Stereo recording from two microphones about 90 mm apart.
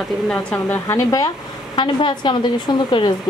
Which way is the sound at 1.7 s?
60° left (ahead or behind).